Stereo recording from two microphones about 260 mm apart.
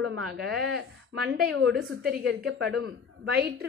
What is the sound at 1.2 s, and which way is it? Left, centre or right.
A woman's voice, right.